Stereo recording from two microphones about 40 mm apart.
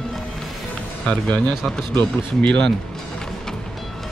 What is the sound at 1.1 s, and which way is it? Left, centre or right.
Speech, left.